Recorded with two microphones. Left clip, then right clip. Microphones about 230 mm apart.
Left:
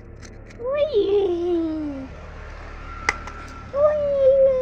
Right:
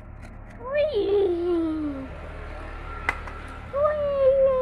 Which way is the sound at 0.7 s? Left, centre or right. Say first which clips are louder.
Left 3 dB; centre.